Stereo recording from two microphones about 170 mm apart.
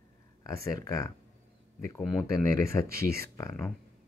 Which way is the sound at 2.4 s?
20° left (ahead or behind).